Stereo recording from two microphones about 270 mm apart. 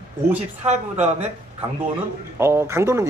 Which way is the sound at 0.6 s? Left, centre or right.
Right.